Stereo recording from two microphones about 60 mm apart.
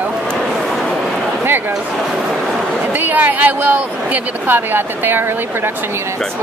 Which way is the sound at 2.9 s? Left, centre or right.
Right.